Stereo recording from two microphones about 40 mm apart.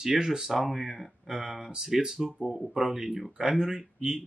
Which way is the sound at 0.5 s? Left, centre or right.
Centre.